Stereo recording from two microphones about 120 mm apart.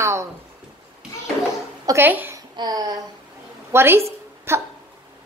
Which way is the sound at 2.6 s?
30° right (ahead or behind).